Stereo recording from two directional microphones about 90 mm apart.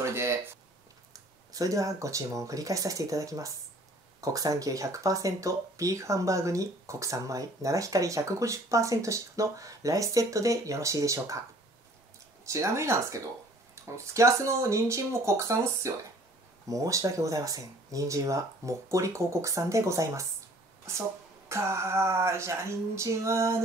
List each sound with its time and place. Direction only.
0.0 s a sound: 30° right (ahead or behind)
1.1 s speech: 40° right (ahead or behind)
12.4 s speech: 35° right (ahead or behind)